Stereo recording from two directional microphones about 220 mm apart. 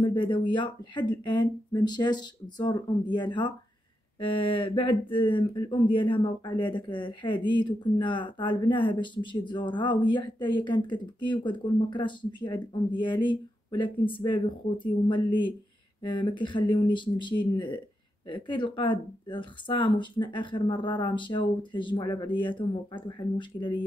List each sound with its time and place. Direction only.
0.0 s speech: 20° left (ahead or behind)